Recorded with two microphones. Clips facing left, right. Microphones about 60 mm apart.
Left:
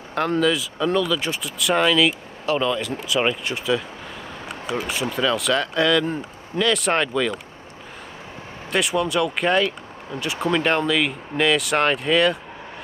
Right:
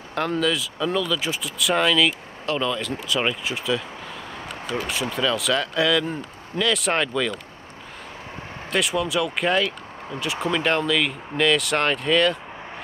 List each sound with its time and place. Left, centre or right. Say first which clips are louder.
0.1 s speech: left 3 dB; centre
5.1 s speech: left 2 dB; centre
8.7 s speech: left 2 dB; centre